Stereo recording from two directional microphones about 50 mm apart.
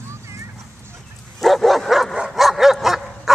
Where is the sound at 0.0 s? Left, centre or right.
Right.